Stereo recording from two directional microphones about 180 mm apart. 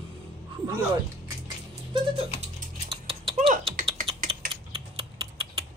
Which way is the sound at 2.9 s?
30° right (ahead or behind).